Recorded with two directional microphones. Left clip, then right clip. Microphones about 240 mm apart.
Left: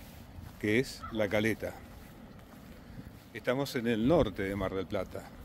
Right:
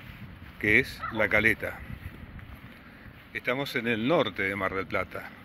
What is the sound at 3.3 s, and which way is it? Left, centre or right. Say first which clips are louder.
Speech: right 3 dB; centre.